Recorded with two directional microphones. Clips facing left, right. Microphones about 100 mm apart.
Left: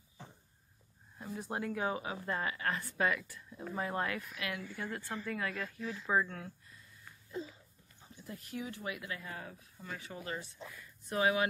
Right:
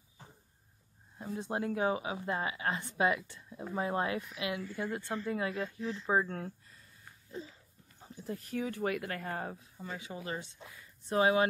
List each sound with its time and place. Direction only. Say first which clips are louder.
1.1 s speech: right 3 dB; 25° right (ahead or behind)
8.3 s speech: right 6 dB; 45° right (ahead or behind)
9.9 s speech: right 2 dB; 20° right (ahead or behind)